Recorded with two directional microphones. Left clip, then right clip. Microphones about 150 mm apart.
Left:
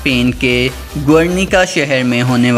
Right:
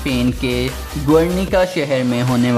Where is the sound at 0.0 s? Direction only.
15° left (ahead or behind).